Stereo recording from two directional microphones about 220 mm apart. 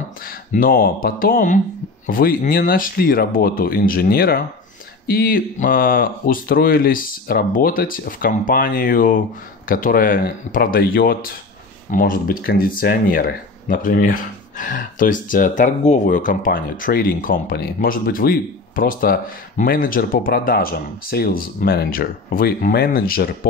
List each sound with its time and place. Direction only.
0.5 s speech: 40° left (ahead or behind)